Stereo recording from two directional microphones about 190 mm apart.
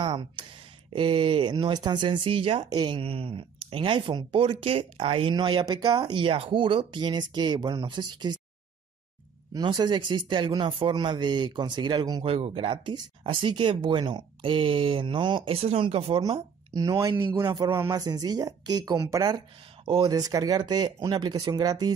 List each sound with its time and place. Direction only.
0.0 s speech: 25° right (ahead or behind)
9.5 s speech: 25° right (ahead or behind)